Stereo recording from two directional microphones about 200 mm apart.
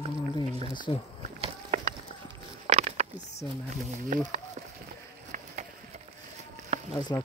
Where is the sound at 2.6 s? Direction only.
35° right (ahead or behind).